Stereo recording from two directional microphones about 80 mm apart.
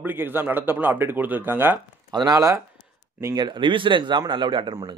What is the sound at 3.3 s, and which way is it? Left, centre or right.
Speech, right.